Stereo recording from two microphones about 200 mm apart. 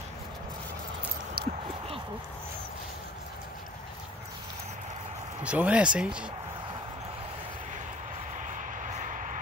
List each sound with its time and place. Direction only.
1.4 s a sound: 50° right (ahead or behind)
5.4 s speech: 5° right (ahead or behind)
8.5 s vehicle: 40° right (ahead or behind)